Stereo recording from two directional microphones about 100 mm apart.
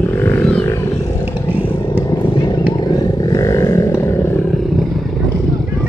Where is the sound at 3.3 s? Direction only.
35° left (ahead or behind).